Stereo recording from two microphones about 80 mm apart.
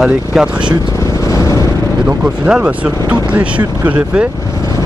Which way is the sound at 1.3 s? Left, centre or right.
Left.